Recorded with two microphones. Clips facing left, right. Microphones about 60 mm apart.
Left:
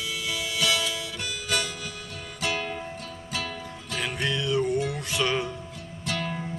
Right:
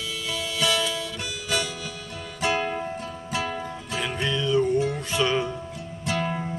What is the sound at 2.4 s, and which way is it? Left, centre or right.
Music, right.